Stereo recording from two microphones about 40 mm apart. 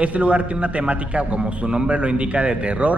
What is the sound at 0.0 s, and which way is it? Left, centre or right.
A man's voice, right.